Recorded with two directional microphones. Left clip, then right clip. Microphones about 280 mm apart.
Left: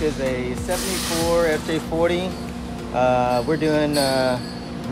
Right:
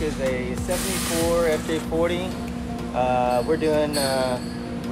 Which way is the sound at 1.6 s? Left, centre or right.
Left.